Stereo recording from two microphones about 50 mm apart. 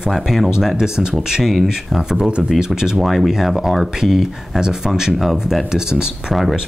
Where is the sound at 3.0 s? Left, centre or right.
Centre.